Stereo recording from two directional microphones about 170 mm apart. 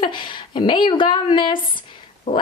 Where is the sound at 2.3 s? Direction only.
40° left (ahead or behind).